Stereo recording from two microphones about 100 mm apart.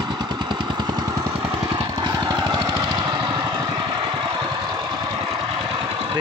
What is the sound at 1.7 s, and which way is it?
Vehicle, 45° right (ahead or behind).